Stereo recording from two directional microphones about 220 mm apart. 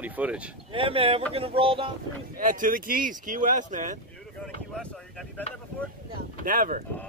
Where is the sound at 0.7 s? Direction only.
25° right (ahead or behind).